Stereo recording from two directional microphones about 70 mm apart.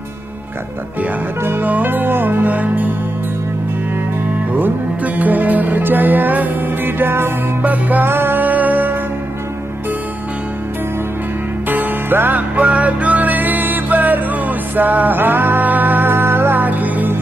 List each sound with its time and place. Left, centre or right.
1.4 s music: right
4.6 s music: right
11.7 s music: right